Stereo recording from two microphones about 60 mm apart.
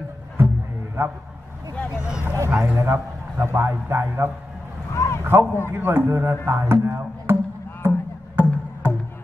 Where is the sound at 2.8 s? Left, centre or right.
Right.